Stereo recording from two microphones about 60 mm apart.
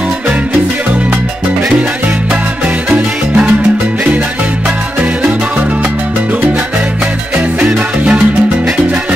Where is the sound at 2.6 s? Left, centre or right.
Right.